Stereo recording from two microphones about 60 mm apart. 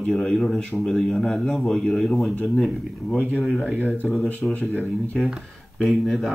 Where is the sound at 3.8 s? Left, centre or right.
Left.